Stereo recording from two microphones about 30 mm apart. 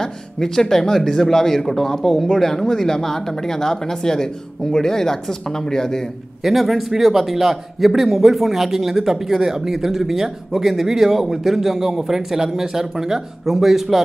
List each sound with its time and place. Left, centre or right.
0.0 s a sound: centre
0.9 s speech: centre
6.4 s a man's voice: centre